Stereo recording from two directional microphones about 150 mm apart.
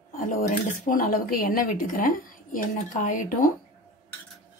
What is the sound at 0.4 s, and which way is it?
Speech, 60° left (ahead or behind).